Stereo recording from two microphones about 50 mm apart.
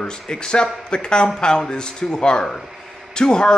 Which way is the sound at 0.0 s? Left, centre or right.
Centre.